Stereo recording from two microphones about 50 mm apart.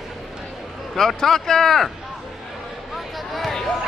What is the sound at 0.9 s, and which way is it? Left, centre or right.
Speech, centre.